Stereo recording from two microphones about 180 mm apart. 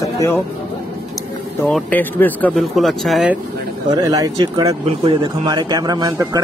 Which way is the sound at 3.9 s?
20° right (ahead or behind).